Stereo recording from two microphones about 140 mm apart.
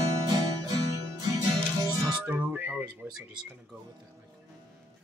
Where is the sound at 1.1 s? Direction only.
25° right (ahead or behind).